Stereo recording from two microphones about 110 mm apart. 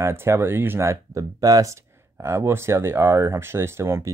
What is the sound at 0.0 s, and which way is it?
Speech, 25° right (ahead or behind).